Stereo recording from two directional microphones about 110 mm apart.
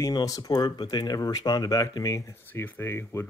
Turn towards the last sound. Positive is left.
turn(degrees=20)  # may be behind; listen again after turning